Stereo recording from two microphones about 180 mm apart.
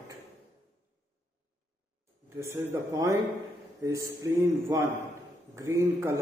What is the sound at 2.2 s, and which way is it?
A man's voice, 15° right (ahead or behind).